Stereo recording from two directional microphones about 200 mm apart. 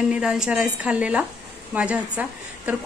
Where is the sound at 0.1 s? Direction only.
5° right (ahead or behind).